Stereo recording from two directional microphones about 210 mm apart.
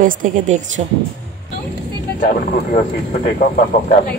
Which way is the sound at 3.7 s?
35° left (ahead or behind).